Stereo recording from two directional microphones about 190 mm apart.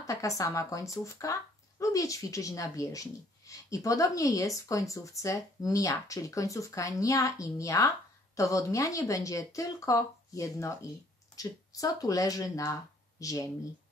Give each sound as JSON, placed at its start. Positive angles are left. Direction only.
{"t": 0.0, "sound": "speech", "side_deg": 15}